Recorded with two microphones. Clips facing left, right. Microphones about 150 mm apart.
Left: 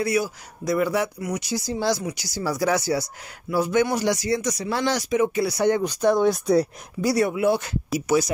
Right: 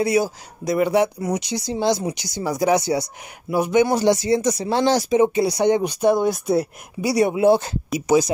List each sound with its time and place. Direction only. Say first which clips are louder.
0.0 s speech: right 4 dB; 25° right (ahead or behind)